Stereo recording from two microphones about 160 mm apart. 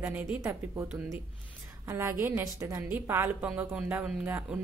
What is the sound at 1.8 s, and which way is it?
A woman's voice, 15° right (ahead or behind).